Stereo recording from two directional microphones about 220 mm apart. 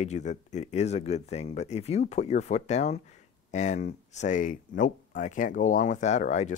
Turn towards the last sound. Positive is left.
turn(degrees=30)  # may be behind; listen again after turning